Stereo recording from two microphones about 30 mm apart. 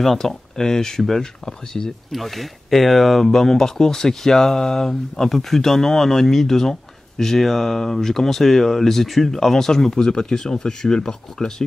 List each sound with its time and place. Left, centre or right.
0.0 s speech: centre
1.0 s speech: centre
1.7 s speech: left
2.1 s speech: centre